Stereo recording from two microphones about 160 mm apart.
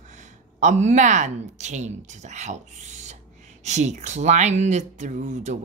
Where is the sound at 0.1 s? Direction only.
50° right (ahead or behind).